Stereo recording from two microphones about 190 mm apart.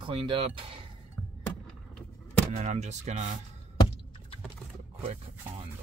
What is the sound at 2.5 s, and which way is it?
Speech, 35° right (ahead or behind).